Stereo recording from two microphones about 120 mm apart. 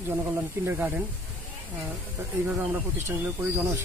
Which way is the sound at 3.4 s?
20° right (ahead or behind).